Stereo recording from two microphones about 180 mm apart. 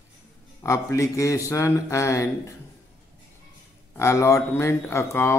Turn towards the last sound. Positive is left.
turn(degrees=15)  # may be behind; listen again after turning